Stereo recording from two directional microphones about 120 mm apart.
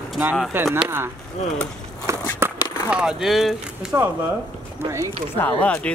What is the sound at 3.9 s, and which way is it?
Speech, 25° right (ahead or behind).